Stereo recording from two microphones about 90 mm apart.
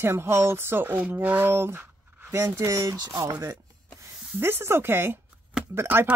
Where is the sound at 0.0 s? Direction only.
25° right (ahead or behind).